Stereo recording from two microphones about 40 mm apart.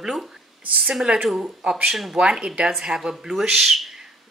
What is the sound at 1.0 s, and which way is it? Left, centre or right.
Speech, centre.